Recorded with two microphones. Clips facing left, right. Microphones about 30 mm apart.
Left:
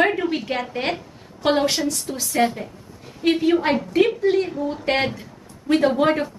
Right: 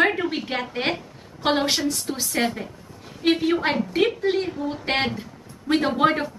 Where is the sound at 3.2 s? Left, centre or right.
Centre.